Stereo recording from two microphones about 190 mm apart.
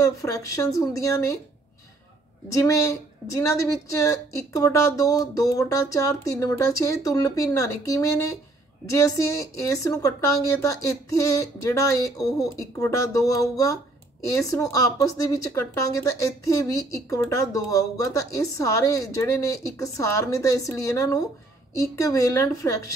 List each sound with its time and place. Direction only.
0.0 s speech: 15° left (ahead or behind)
2.5 s speech: 15° left (ahead or behind)